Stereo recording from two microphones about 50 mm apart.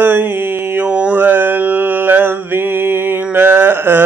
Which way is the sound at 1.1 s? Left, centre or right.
Right.